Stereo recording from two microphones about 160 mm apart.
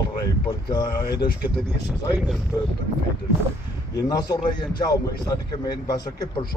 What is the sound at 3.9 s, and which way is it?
A man's voice, 25° left (ahead or behind).